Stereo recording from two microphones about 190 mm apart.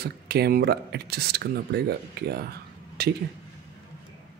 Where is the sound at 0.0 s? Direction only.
55° right (ahead or behind).